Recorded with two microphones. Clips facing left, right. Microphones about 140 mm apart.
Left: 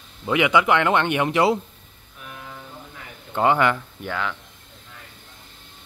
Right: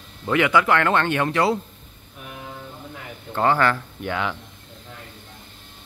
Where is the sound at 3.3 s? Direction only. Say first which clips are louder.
Left 1 dB; 15° left (ahead or behind).